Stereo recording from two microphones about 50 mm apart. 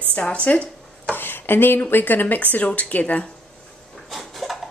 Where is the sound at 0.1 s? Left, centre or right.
Left.